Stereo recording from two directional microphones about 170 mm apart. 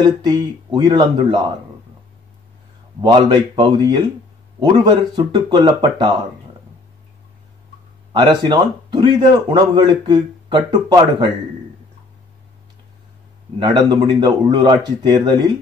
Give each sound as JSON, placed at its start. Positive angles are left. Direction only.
{"t": 0.0, "sound": "a man's voice", "side_deg": -25}
{"t": 3.0, "sound": "a man's voice", "side_deg": -25}
{"t": 8.1, "sound": "a man's voice", "side_deg": -25}
{"t": 13.6, "sound": "a man's voice", "side_deg": -25}